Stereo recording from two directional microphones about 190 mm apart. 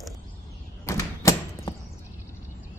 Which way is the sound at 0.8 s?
15° left (ahead or behind).